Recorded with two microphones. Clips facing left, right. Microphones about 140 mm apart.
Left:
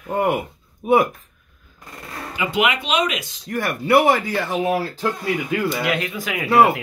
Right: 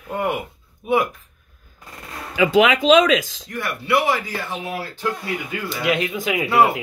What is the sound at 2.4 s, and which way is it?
Speech, 90° right.